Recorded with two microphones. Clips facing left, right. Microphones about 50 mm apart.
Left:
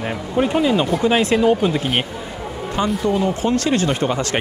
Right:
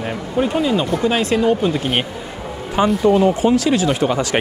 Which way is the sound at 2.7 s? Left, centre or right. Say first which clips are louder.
Right 5 dB; centre.